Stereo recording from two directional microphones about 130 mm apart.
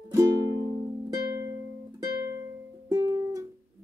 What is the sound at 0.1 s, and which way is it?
Music, 25° right (ahead or behind).